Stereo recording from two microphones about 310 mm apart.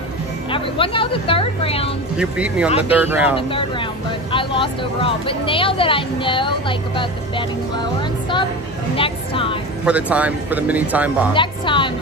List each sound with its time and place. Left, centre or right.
0.5 s speech: centre
2.1 s speech: centre
3.3 s speech: centre
9.8 s speech: centre
11.3 s speech: centre